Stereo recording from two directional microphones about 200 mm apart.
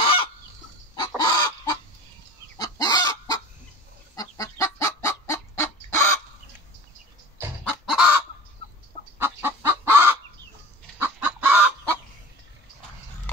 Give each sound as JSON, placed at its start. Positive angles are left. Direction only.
{"t": 0.0, "sound": "fowl", "side_deg": 25}
{"t": 2.5, "sound": "chicken", "side_deg": 20}
{"t": 4.1, "sound": "fowl", "side_deg": 15}
{"t": 7.3, "sound": "chicken", "side_deg": -10}
{"t": 9.2, "sound": "fowl", "side_deg": -10}
{"t": 11.0, "sound": "chicken", "side_deg": -5}